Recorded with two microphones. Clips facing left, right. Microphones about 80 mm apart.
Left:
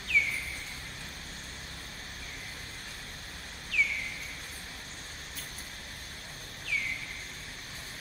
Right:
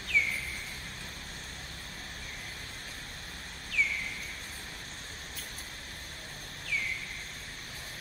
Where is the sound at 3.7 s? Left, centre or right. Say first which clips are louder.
Left 1 dB; right.